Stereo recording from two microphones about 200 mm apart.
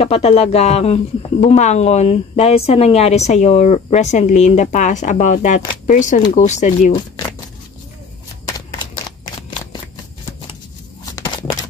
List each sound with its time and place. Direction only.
0.0 s speech: 30° left (ahead or behind)
8.5 s shuffling cards: 20° left (ahead or behind)
11.1 s a sound: 15° left (ahead or behind)